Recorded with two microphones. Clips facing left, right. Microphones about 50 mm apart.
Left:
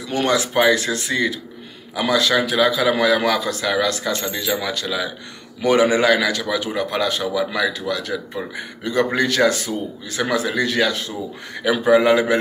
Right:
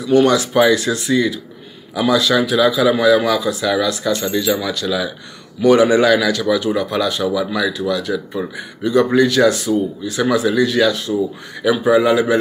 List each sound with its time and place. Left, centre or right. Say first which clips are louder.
0.2 s speech: even; left